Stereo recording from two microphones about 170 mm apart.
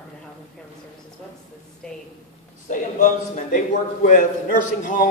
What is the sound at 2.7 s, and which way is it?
A man's voice, 50° left (ahead or behind).